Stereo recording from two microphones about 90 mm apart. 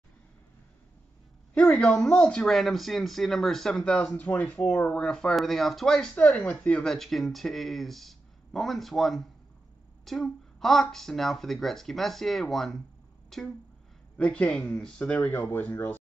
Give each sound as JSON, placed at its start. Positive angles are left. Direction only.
{"t": 1.5, "sound": "speech", "side_deg": 15}